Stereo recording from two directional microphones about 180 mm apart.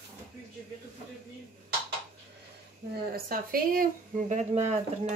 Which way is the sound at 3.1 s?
55° right (ahead or behind).